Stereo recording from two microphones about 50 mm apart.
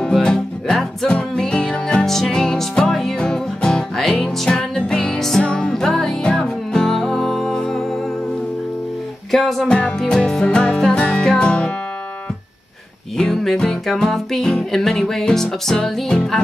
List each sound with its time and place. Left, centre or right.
0.0 s music: centre
4.5 s music: centre
9.7 s music: left
13.2 s music: centre